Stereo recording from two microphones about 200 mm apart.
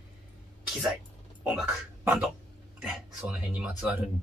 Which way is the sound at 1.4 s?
Centre (ahead or behind).